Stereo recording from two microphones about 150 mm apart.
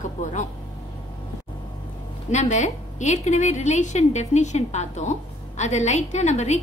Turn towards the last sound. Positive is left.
turn(degrees=50)  # may be behind; listen again after turning